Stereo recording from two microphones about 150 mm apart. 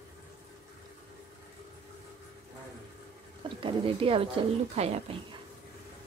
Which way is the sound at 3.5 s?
35° right (ahead or behind).